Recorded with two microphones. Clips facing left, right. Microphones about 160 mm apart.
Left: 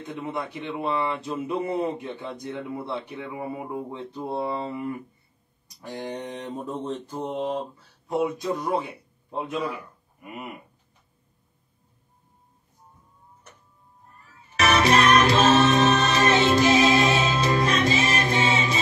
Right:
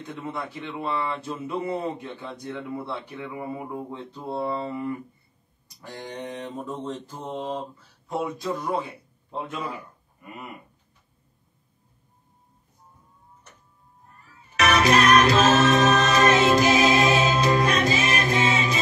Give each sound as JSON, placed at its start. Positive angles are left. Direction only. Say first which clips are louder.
{"t": 0.3, "sound": "speech", "louder": "left 2 dB", "side_deg": 15}
{"t": 5.9, "sound": "speech", "louder": "left 2 dB", "side_deg": 20}
{"t": 7.1, "sound": "mantra", "louder": "left 4 dB", "side_deg": 20}
{"t": 8.1, "sound": "a man's voice", "louder": "left 3 dB", "side_deg": 20}
{"t": 10.2, "sound": "mantra", "louder": "left 3 dB", "side_deg": 15}
{"t": 14.6, "sound": "music", "louder": "even", "side_deg": 30}
{"t": 16.6, "sound": "music", "louder": "even", "side_deg": -30}
{"t": 17.6, "sound": "music", "louder": "even", "side_deg": 30}